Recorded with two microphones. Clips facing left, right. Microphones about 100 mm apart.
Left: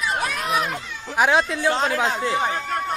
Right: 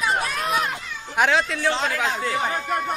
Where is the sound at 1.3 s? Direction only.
20° left (ahead or behind).